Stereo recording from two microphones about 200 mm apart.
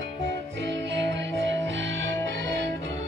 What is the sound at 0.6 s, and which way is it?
Music, 60° right (ahead or behind).